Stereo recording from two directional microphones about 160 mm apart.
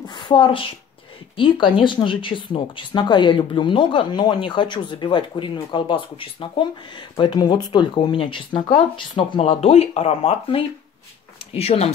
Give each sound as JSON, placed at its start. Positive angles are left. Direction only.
{"t": 0.1, "sound": "a woman's voice", "side_deg": 30}
{"t": 9.4, "sound": "speech", "side_deg": 40}